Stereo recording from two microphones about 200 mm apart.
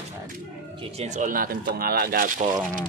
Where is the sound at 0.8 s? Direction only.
30° right (ahead or behind).